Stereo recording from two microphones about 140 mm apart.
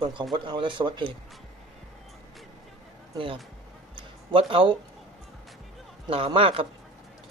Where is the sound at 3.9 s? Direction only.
40° right (ahead or behind).